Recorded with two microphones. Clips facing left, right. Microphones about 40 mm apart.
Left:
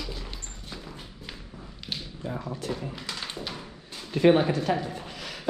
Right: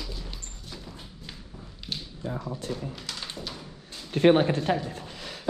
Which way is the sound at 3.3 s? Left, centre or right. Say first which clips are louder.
Left 2 dB; left.